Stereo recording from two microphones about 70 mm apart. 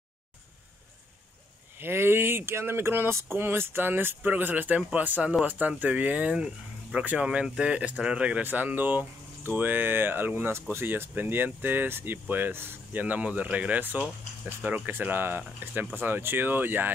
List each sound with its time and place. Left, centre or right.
1.8 s speech: right; by 8.5 s centre
8.5 s speech: right